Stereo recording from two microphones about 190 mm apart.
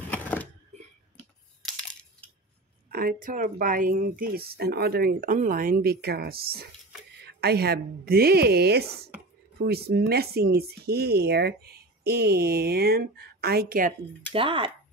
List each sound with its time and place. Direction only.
0.1 s a sound: 10° left (ahead or behind)
2.9 s speech: 50° right (ahead or behind)
14.3 s speech: 25° right (ahead or behind)